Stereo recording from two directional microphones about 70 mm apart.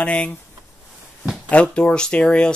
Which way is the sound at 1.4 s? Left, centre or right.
Centre.